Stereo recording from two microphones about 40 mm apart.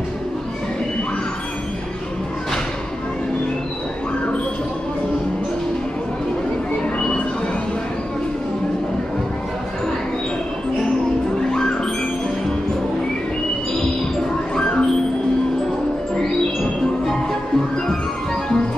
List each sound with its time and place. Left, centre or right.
11.5 s music: centre
14.5 s music: centre
17.0 s music: centre